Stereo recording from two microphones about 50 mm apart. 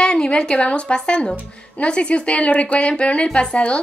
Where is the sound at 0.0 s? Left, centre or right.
Centre.